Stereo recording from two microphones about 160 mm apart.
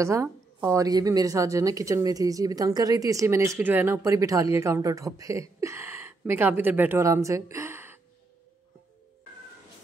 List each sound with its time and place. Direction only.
0.0 s a woman's voice: 20° right (ahead or behind)